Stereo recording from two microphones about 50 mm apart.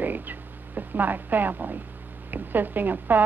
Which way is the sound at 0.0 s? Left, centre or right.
Right.